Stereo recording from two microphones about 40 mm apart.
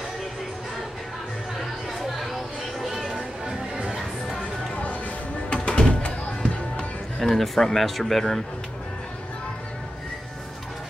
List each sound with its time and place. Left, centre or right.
1.9 s a sound: centre
2.8 s music: centre
4.7 s music: left
5.5 s music: left
7.2 s speech: centre